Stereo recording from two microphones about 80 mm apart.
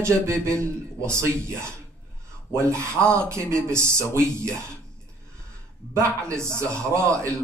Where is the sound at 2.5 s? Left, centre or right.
Right.